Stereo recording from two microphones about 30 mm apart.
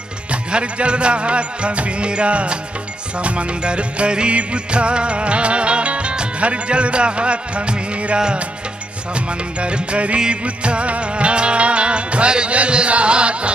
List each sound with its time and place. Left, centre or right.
0.3 s music: right